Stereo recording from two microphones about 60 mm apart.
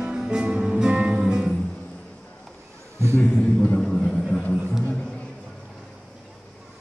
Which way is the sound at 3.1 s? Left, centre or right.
Left.